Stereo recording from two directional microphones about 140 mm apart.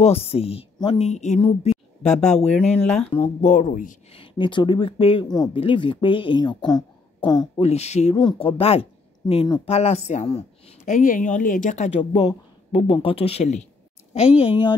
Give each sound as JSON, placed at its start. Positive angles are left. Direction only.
{"t": 0.0, "sound": "speech", "side_deg": 45}
{"t": 2.0, "sound": "speech", "side_deg": 5}
{"t": 3.1, "sound": "speech", "side_deg": 55}
{"t": 4.1, "sound": "speech", "side_deg": 40}
{"t": 5.2, "sound": "speech", "side_deg": 30}
{"t": 7.6, "sound": "speech", "side_deg": 50}
{"t": 8.2, "sound": "speech", "side_deg": 35}
{"t": 10.9, "sound": "speech", "side_deg": 65}
{"t": 12.0, "sound": "speech", "side_deg": 45}
{"t": 14.4, "sound": "speech", "side_deg": 40}